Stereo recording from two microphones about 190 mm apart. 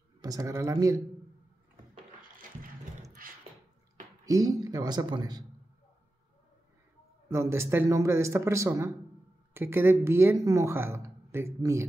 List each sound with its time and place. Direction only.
0.2 s speech: 20° right (ahead or behind)
2.4 s a sound: 45° right (ahead or behind)
4.3 s speech: 20° right (ahead or behind)
7.2 s speech: 15° right (ahead or behind)